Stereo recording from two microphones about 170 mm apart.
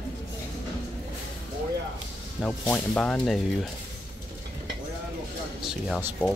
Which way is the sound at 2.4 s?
5° left (ahead or behind).